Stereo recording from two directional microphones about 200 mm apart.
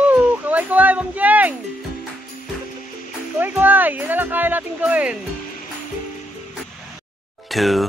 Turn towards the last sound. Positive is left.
turn(degrees=0)  # may be behind; listen again after turning